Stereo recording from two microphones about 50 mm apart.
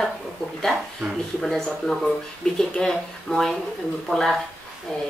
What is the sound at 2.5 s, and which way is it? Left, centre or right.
Speech, centre.